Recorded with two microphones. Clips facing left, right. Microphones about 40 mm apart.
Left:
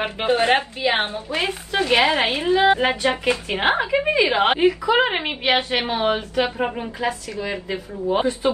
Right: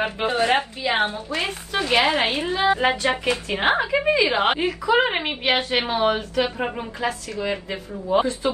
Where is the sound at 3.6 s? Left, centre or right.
Centre.